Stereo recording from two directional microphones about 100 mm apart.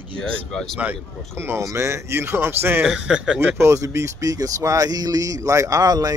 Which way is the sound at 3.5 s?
30° right (ahead or behind).